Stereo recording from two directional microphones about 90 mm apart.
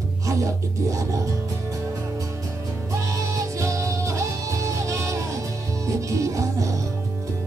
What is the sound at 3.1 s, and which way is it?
Music, 35° right (ahead or behind).